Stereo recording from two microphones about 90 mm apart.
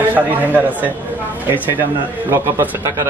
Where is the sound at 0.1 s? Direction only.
20° right (ahead or behind).